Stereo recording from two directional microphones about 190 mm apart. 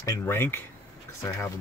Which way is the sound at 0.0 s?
15° left (ahead or behind).